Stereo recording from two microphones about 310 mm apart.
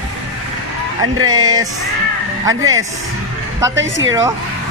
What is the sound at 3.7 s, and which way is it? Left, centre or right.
Speech, right.